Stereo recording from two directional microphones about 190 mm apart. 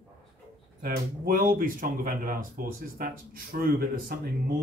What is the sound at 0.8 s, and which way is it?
Speech, 50° right (ahead or behind).